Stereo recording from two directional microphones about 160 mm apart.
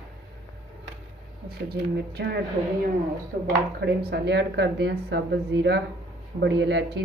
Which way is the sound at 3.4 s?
90° right.